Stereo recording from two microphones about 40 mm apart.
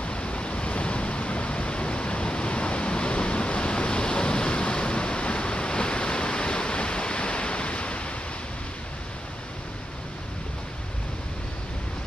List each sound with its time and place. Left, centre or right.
0.0 s waves: left